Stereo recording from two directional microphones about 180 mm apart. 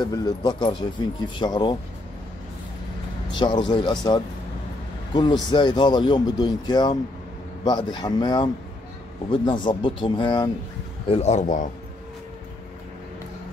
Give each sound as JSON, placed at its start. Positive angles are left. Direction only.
{"t": 0.0, "sound": "speech", "side_deg": 25}
{"t": 3.3, "sound": "speech", "side_deg": 25}
{"t": 11.1, "sound": "speech", "side_deg": 35}